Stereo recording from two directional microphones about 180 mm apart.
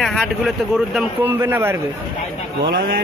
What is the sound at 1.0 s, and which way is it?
Speech, 10° right (ahead or behind).